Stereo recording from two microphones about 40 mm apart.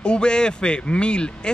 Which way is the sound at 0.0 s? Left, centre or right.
Left.